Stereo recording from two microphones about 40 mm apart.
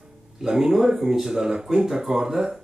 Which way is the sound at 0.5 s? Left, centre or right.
Centre.